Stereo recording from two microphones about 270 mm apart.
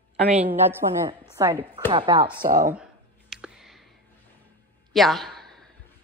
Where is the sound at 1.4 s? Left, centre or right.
Centre.